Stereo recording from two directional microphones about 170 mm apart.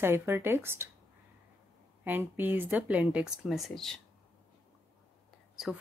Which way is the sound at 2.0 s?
10° right (ahead or behind).